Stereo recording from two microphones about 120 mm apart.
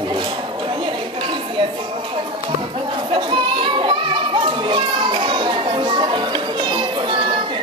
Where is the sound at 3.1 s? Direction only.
40° right (ahead or behind).